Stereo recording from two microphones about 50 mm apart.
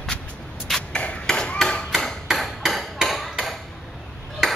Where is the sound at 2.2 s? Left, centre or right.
Centre.